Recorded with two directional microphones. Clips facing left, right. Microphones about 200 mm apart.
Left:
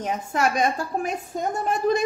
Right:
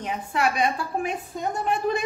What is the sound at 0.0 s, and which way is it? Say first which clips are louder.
A woman's voice: left 1 dB; 45° left (ahead or behind).